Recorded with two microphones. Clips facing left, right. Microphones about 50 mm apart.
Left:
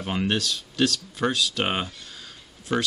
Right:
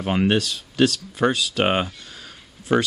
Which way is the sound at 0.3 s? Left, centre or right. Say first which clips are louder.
Right 5 dB; centre.